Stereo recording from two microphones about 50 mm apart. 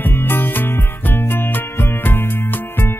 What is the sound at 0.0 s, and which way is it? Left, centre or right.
Music, left.